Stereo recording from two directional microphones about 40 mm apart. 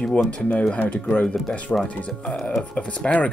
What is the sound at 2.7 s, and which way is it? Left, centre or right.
Speech, left.